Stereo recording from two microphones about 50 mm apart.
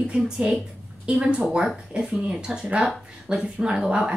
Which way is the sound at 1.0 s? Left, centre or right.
Right.